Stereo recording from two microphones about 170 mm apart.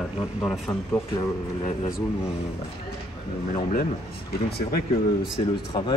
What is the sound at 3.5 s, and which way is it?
Speech, 50° left (ahead or behind).